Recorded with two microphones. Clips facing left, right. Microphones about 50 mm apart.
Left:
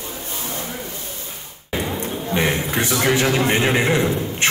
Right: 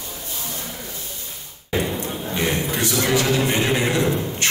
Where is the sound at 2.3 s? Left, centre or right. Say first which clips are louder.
Left 3 dB; left.